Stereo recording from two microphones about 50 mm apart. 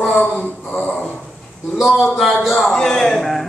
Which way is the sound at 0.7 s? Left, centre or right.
Left.